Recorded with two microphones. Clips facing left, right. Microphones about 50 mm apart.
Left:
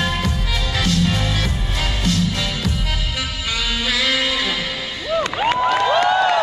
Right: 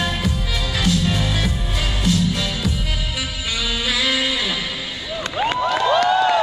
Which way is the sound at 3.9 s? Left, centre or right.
Centre.